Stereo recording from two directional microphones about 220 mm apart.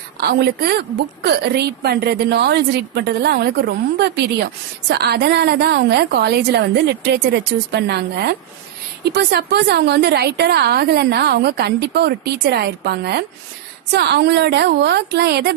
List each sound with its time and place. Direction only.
0.2 s a woman's voice: 45° right (ahead or behind)